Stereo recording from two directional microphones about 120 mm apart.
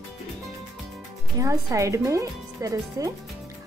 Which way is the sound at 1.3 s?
25° right (ahead or behind).